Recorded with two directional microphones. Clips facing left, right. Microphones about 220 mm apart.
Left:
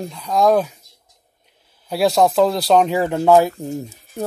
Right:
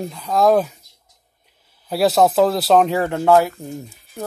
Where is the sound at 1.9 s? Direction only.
Centre (ahead or behind).